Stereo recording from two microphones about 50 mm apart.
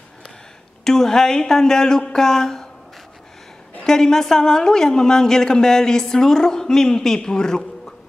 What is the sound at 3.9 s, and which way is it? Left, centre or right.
A woman's voice, centre.